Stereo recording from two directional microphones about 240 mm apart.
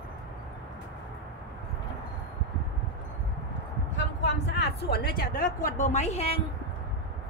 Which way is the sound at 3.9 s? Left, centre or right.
Left.